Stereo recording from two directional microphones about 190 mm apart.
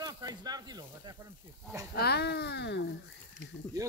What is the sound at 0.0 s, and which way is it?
Snake, 20° right (ahead or behind).